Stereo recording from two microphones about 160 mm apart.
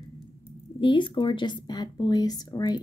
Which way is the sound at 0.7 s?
30° left (ahead or behind).